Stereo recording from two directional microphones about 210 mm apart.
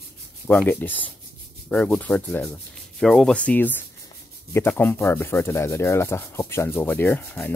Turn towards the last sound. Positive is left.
turn(degrees=10)  # may be behind; listen again after turning